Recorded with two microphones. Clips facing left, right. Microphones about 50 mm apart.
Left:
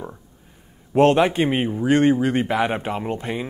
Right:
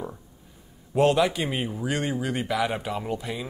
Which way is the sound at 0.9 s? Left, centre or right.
Left.